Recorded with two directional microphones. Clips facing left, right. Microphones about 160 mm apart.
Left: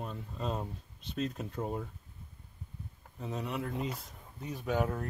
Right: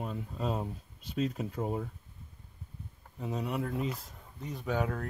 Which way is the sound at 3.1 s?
5° right (ahead or behind).